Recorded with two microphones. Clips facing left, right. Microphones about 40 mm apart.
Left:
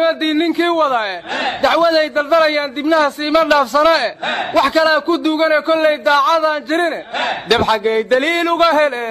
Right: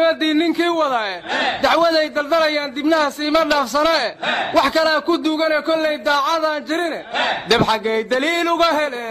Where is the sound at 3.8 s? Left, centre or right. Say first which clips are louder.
Left 4 dB; centre.